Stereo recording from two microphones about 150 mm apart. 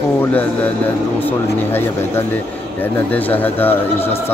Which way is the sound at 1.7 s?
15° left (ahead or behind).